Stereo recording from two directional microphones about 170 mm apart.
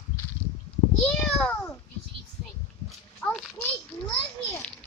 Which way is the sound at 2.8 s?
Centre (ahead or behind).